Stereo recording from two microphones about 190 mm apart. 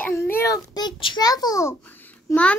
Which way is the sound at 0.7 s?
25° left (ahead or behind).